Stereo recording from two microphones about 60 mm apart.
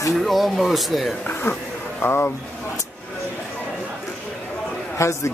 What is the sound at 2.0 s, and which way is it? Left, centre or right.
Speech, left.